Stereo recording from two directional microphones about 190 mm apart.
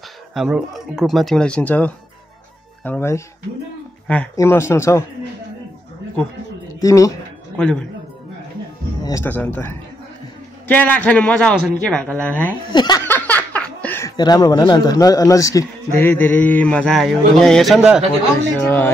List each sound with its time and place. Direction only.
0.3 s a man's voice: centre (ahead or behind); by 5.0 s 15° left (ahead or behind)
6.8 s a woman's voice: 15° left (ahead or behind)
7.5 s speech: 5° left (ahead or behind)
9.0 s a man's voice: 15° left (ahead or behind)
12.7 s speech: 20° left (ahead or behind)
13.0 s speech: 10° left (ahead or behind)